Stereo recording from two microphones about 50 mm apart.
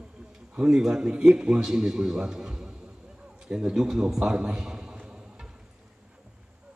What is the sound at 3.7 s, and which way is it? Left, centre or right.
Speech, centre.